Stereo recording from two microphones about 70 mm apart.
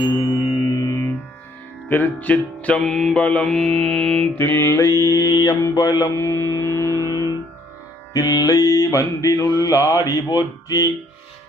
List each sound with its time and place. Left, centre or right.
0.1 s music: left
1.9 s speech: left
2.9 s mantra: centre
3.2 s speech: centre
3.4 s music: centre
4.4 s music: left
5.0 s mantra: left
6.1 s music: left
7.1 s music: left
8.1 s mantra: left